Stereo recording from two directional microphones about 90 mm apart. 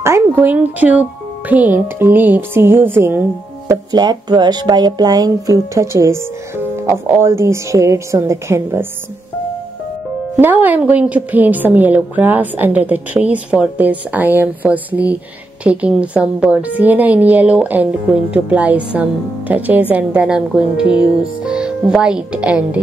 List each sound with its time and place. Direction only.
0.0 s a woman's voice: 25° right (ahead or behind)
3.6 s speech: 45° right (ahead or behind)
10.4 s a woman's voice: 20° right (ahead or behind)